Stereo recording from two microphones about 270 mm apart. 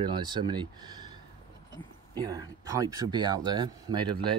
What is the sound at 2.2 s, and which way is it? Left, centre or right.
Speech, centre.